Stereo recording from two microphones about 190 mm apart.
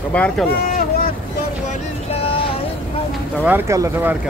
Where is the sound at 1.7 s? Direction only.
30° left (ahead or behind).